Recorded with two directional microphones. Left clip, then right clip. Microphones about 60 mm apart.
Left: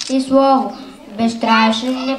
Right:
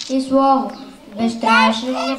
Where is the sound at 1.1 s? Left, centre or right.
Left.